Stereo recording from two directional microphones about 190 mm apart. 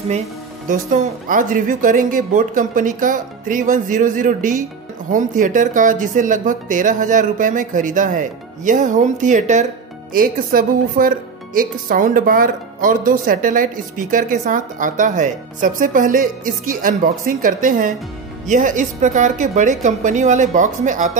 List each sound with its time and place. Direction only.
0.7 s a woman's voice: 45° right (ahead or behind)